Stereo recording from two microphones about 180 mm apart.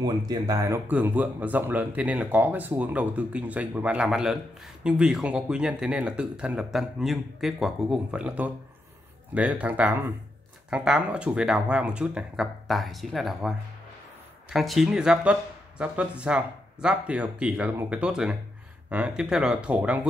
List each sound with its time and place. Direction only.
0.0 s speech: 20° right (ahead or behind)